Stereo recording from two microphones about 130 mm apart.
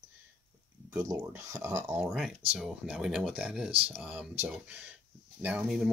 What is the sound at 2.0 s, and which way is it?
Speech, 5° right (ahead or behind).